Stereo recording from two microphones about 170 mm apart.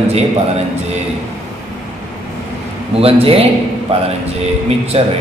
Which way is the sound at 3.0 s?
35° right (ahead or behind).